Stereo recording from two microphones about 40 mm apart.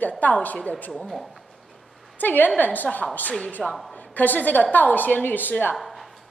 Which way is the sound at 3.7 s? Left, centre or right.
Centre.